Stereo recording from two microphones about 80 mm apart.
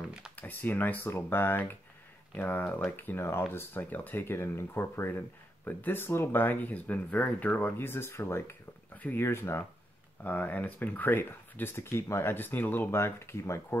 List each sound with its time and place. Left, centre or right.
0.4 s speech: left